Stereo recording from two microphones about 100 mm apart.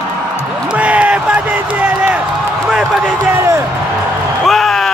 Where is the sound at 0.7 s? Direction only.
15° right (ahead or behind).